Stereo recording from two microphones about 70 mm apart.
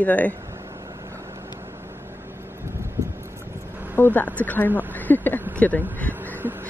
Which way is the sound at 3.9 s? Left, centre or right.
Left.